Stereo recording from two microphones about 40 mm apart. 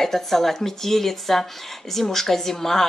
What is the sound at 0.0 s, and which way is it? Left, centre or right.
Speech, centre.